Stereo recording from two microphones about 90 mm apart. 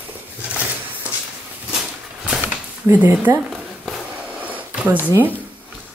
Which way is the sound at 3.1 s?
25° right (ahead or behind).